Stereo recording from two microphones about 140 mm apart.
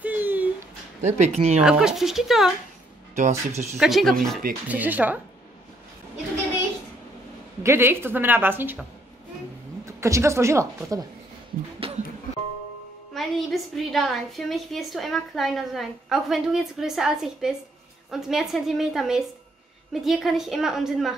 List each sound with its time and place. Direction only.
0.0 s a sound: 15° right (ahead or behind)
1.0 s speech: 55° right (ahead or behind)
1.6 s a woman's voice: 5° right (ahead or behind)
3.2 s speech: 55° right (ahead or behind)
3.8 s a woman's voice: centre (ahead or behind)
4.6 s a woman's voice: 10° right (ahead or behind)
7.6 s a woman's voice: 15° right (ahead or behind)
9.8 s speech: 20° right (ahead or behind)
11.8 s music: 40° right (ahead or behind)
13.1 s a woman's voice: centre (ahead or behind)